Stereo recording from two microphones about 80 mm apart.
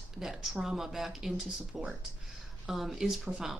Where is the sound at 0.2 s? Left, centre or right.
Centre.